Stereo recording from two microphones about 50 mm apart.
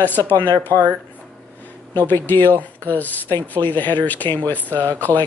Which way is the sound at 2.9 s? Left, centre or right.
Left.